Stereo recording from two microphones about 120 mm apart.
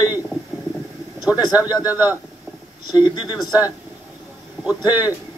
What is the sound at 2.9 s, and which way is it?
Speech, 40° left (ahead or behind).